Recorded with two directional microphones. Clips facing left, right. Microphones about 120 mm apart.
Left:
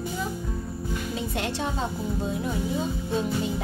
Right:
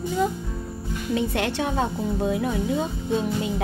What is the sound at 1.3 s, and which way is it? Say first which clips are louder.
Speech: right 4 dB; 70° right (ahead or behind).